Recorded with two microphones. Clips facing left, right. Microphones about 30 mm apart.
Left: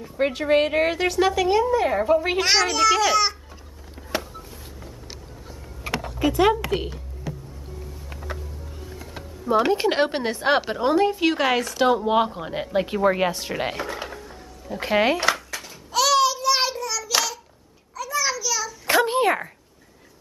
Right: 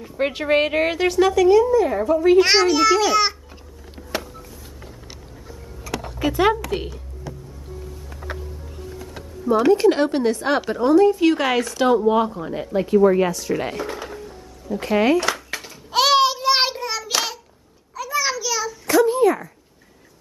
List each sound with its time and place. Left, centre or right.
0.0 s a woman's voice: centre
1.5 s a woman's voice: left
2.4 s a child's voice: centre
4.1 s music: centre
6.0 s speech: centre
8.2 s music: centre
9.5 s a woman's voice: centre
11.2 s a woman's voice: centre
12.1 s a woman's voice: left
14.2 s music: left
15.9 s child singing: right
17.9 s a sound: centre
18.9 s a sound: left